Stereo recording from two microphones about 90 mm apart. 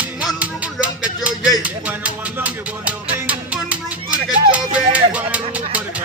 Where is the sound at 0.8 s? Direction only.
15° right (ahead or behind).